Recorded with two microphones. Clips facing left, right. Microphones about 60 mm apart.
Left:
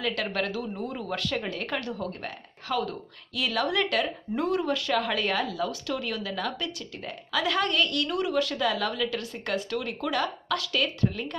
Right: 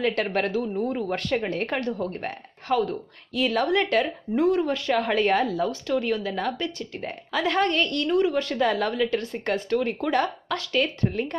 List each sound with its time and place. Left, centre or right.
0.0 s speech: right
0.8 s speech: centre
1.5 s speech: right